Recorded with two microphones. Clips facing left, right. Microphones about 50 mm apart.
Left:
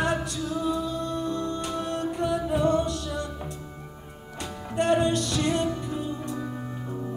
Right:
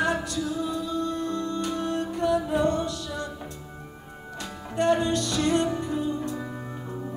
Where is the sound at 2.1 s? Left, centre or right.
Centre.